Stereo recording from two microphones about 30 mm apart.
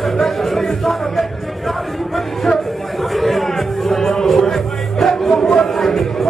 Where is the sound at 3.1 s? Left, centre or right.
Centre.